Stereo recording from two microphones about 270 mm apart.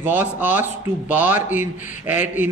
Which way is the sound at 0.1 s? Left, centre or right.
Centre.